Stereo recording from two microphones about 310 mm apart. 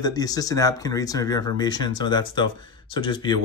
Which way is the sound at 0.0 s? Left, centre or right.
Centre.